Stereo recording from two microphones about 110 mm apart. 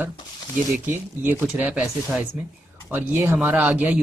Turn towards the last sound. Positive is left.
turn(degrees=-15)  # may be behind; listen again after turning